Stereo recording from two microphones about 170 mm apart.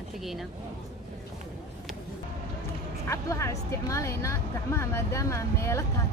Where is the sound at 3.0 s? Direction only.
15° left (ahead or behind).